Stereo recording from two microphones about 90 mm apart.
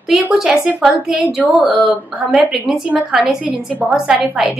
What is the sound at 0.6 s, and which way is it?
Speech, 5° right (ahead or behind).